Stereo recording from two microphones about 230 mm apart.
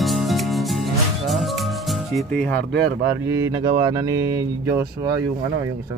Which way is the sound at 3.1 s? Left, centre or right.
Centre.